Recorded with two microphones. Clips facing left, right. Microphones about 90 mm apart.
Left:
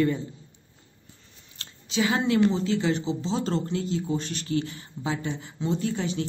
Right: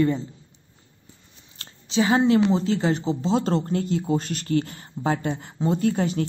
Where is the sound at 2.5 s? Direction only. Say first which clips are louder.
Right 3 dB; 35° right (ahead or behind).